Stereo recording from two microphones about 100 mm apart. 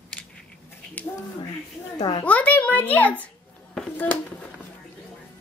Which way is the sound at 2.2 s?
15° left (ahead or behind).